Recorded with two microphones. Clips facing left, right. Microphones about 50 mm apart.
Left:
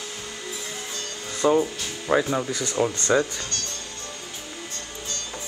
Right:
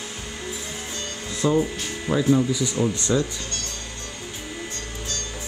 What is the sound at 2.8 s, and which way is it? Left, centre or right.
Speech, left.